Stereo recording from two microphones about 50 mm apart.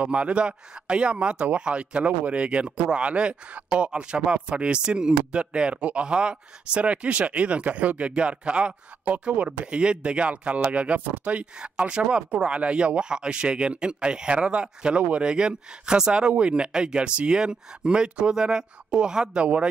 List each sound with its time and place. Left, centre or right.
0.0 s a man's voice: right
19.4 s a man's voice: right